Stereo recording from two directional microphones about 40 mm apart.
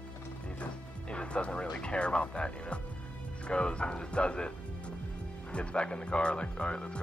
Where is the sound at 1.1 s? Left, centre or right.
Left.